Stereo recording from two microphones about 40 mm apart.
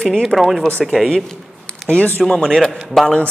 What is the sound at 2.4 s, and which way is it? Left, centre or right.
Speech, centre.